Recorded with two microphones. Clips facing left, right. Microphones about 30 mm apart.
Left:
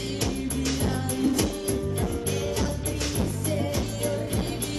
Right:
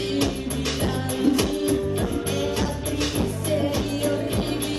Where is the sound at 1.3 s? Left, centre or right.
Right.